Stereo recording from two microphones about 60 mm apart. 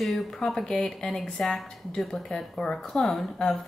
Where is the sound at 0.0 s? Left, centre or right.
Centre.